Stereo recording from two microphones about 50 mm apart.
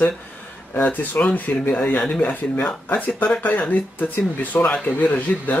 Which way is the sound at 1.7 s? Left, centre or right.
Left.